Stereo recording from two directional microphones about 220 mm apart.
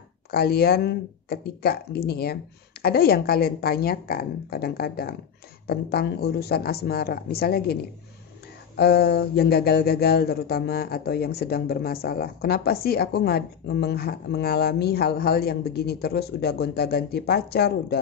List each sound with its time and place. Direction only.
0.3 s speech: 45° left (ahead or behind)